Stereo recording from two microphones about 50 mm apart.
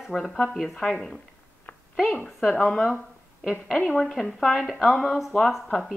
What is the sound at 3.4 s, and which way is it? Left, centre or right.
Speech, centre.